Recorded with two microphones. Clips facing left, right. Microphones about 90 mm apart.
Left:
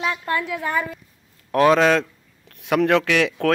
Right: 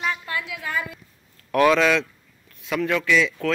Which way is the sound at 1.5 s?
35° left (ahead or behind).